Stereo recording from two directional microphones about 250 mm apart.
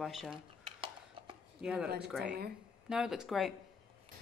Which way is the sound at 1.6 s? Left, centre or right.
Centre.